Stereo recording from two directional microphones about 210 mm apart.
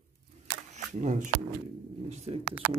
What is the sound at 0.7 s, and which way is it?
Camera, 35° right (ahead or behind).